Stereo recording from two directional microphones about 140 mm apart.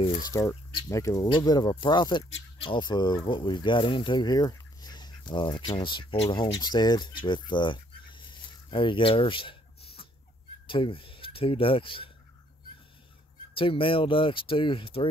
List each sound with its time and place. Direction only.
0.2 s speech: 20° left (ahead or behind)
8.6 s a sound: 35° left (ahead or behind)
10.7 s speech: 40° left (ahead or behind)
13.6 s speech: 40° left (ahead or behind)